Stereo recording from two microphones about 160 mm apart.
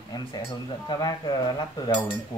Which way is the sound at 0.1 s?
25° left (ahead or behind).